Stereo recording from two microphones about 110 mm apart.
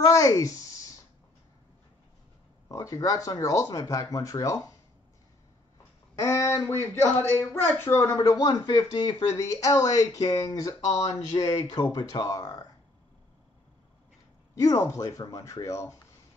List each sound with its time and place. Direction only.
0.0 s a sound: 30° left (ahead or behind)
2.7 s speech: 30° left (ahead or behind)
6.2 s speech: 25° left (ahead or behind)
14.5 s speech: 30° left (ahead or behind)